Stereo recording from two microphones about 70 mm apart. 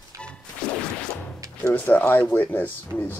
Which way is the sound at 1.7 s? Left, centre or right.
Left.